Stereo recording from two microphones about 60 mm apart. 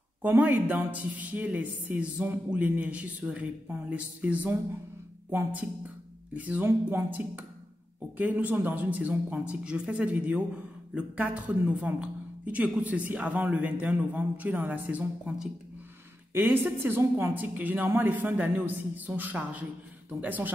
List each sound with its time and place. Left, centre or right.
0.2 s speech: right
6.3 s speech: right
6.6 s a woman's voice: right
16.3 s a woman's voice: right